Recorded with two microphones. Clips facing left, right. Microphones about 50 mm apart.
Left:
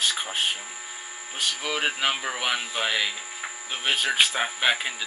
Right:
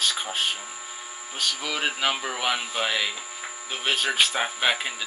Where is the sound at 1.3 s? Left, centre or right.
Centre.